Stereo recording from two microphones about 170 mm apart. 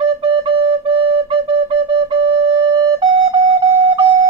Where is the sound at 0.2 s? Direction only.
30° right (ahead or behind).